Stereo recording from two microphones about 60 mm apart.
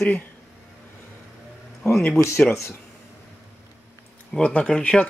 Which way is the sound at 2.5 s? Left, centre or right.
Left.